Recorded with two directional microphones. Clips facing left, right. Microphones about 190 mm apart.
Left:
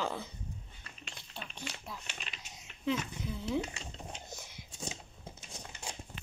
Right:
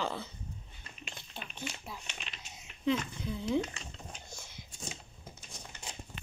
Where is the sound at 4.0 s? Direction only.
20° left (ahead or behind).